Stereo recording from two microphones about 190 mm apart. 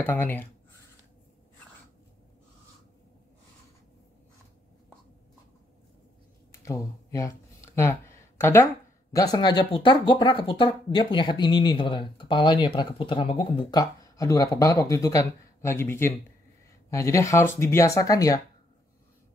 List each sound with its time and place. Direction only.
0.0 s speech: 10° left (ahead or behind)
6.5 s a sound: 15° left (ahead or behind)
9.1 s speech: 20° left (ahead or behind)